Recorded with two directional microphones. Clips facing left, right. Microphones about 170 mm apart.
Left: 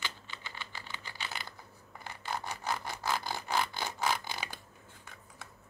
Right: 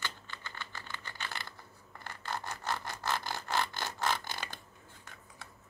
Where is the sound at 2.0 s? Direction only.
10° left (ahead or behind).